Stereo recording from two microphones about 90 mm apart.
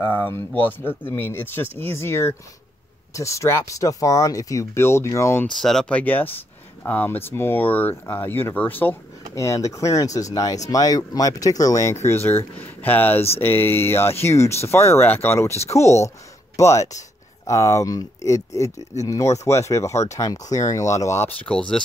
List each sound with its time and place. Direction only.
0.0 s speech: 20° left (ahead or behind)
5.6 s speech: 5° left (ahead or behind); by 8.9 s 20° left (ahead or behind)
9.3 s speech: 35° left (ahead or behind)
21.5 s speech: 10° left (ahead or behind)